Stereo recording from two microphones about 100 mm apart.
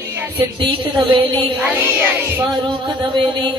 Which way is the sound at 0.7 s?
60° right (ahead or behind).